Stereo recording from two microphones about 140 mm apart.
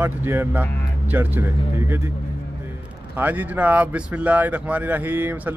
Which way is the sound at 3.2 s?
10° right (ahead or behind).